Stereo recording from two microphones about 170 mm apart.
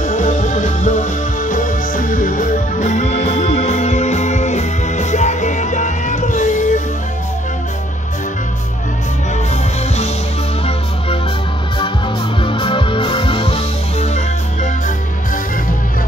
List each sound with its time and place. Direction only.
0.0 s music: 50° left (ahead or behind)
12.4 s music: 30° left (ahead or behind)